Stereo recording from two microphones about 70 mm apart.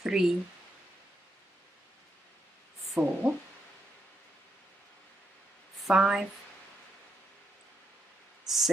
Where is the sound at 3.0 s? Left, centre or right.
Right.